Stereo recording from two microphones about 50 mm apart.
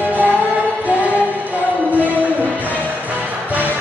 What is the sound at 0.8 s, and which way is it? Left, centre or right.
Music, right.